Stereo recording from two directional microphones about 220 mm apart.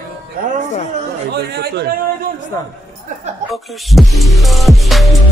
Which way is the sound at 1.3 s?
45° right (ahead or behind).